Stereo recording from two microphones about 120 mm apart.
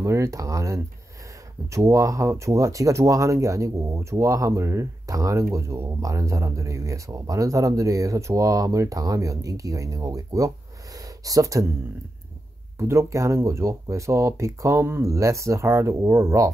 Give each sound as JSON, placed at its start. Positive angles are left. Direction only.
{"t": 0.0, "sound": "speech", "side_deg": -25}
{"t": 12.7, "sound": "speech", "side_deg": -25}